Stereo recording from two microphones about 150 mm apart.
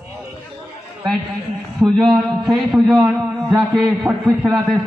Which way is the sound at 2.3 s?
Centre (ahead or behind).